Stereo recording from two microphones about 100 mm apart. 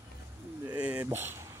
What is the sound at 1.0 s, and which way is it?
Speech, 20° right (ahead or behind).